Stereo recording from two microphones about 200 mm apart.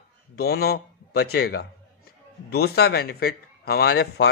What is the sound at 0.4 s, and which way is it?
A man's voice, 50° left (ahead or behind).